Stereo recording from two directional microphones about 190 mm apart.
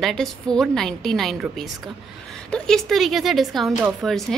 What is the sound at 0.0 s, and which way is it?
Speech, centre (ahead or behind).